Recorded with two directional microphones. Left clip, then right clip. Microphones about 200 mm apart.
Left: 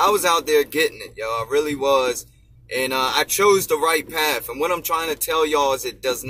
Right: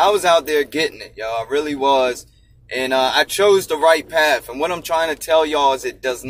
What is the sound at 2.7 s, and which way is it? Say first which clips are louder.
Speech: right 4 dB; 15° left (ahead or behind).